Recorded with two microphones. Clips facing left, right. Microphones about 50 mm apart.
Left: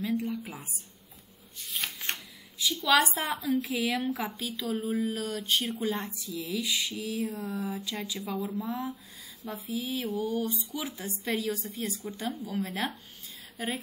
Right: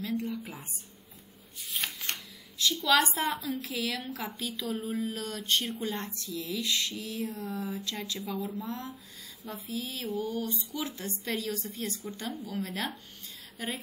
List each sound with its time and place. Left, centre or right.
0.1 s a sound: centre
0.5 s speech: centre
1.6 s shuffling cards: centre
2.6 s speech: centre
3.8 s a woman's voice: centre
4.4 s speech: centre